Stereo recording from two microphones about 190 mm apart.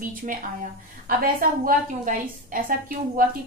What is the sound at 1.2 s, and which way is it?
A woman's voice, 45° right (ahead or behind).